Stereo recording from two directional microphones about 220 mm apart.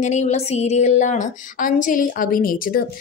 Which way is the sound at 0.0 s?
30° left (ahead or behind).